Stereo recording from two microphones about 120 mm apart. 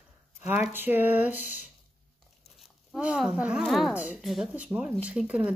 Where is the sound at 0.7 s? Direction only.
15° right (ahead or behind).